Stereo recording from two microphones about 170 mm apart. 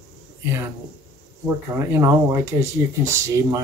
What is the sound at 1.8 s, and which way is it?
Speech, 15° right (ahead or behind).